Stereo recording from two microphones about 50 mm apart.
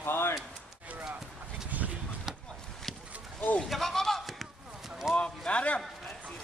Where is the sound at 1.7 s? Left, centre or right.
Right.